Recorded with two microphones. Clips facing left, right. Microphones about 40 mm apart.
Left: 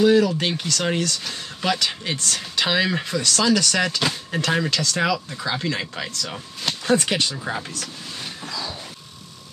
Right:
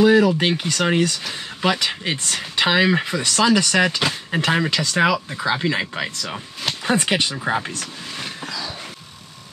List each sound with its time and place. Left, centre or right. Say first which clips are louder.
0.0 s speech: right 2 dB; centre